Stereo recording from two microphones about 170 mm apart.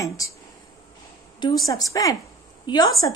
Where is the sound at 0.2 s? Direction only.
20° left (ahead or behind).